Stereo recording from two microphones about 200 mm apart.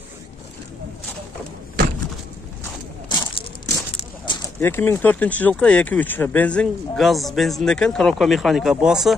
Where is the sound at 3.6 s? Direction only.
20° left (ahead or behind).